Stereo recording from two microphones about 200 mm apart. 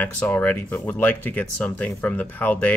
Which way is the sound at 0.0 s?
5° left (ahead or behind).